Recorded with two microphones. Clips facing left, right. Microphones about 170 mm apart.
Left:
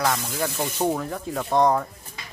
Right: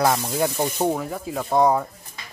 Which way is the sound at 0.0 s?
25° right (ahead or behind).